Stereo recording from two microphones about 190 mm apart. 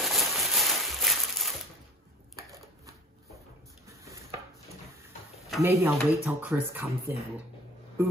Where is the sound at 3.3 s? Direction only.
15° right (ahead or behind).